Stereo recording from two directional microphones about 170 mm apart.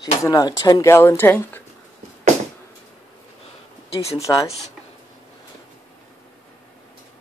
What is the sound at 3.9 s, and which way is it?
Speech, 35° left (ahead or behind).